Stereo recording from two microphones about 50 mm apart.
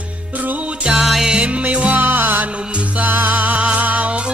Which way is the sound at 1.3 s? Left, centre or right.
Right.